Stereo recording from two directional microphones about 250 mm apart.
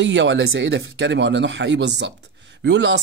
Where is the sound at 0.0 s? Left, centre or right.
Right.